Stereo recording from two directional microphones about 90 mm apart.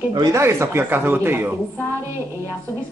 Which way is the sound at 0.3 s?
30° right (ahead or behind).